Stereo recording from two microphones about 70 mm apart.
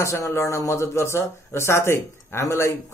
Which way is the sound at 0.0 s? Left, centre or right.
Left.